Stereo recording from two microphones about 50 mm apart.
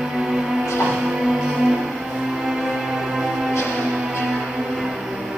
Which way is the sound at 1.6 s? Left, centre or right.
Centre.